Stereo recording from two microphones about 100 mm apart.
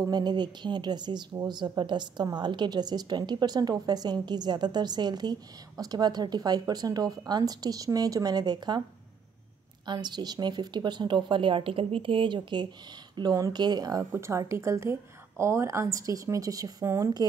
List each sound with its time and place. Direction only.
0.0 s a woman's voice: 45° right (ahead or behind)
9.8 s a woman's voice: 45° right (ahead or behind)
14.1 s a woman's voice: 30° right (ahead or behind)